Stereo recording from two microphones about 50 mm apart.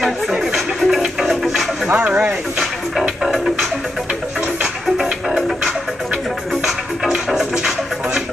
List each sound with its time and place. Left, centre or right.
0.8 s music: centre
2.0 s speech: right
4.9 s music: centre
7.2 s music: centre